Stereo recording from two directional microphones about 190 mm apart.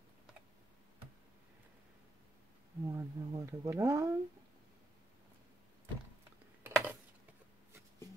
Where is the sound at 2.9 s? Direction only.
15° right (ahead or behind).